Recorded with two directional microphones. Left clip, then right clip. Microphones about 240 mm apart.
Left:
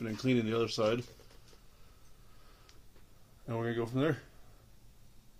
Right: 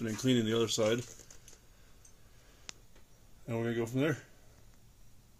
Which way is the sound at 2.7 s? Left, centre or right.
Right.